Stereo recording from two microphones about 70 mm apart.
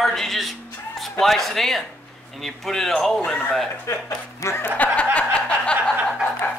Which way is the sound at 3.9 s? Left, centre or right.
Left.